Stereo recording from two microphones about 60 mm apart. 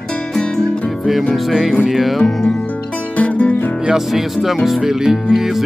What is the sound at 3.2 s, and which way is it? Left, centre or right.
Music, left.